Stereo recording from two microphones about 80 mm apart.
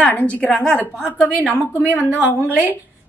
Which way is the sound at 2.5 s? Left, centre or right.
Right.